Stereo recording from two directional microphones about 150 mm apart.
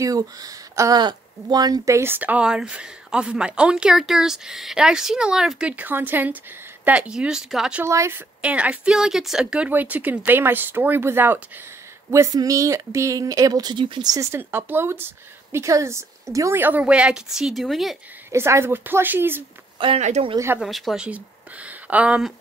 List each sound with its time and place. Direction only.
0.0 s speech: 25° right (ahead or behind); by 7.8 s 5° right (ahead or behind)
7.8 s speech: 15° right (ahead or behind); by 17.9 s centre (ahead or behind)
18.3 s speech: 15° right (ahead or behind)
20.0 s speech: 50° right (ahead or behind)
20.5 s speech: centre (ahead or behind)